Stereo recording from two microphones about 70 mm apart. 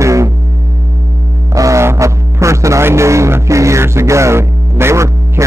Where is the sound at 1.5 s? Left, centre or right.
Right.